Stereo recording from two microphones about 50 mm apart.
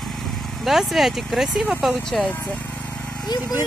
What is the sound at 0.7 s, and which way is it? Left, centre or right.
Speech, centre.